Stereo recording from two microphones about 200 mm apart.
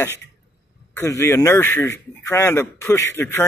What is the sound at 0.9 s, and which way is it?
A man's voice, 15° left (ahead or behind).